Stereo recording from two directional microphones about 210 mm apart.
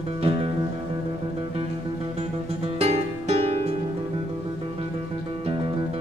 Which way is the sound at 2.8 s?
30° right (ahead or behind).